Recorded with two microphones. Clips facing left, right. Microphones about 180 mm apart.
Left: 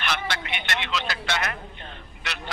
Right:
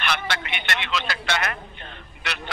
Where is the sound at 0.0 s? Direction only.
65° right (ahead or behind).